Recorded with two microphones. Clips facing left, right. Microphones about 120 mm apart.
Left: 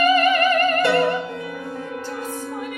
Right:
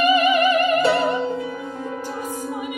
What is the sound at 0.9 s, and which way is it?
Music, 25° right (ahead or behind).